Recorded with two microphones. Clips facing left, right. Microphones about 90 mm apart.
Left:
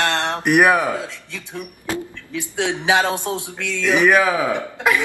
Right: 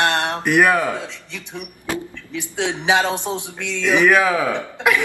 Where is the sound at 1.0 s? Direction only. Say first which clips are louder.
Left 1 dB; 20° right (ahead or behind).